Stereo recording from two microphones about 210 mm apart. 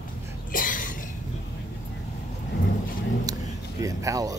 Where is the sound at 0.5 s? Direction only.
40° left (ahead or behind).